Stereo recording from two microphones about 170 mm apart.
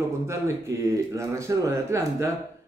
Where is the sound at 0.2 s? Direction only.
15° right (ahead or behind).